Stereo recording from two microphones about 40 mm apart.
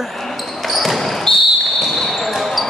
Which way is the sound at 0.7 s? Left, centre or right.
Centre.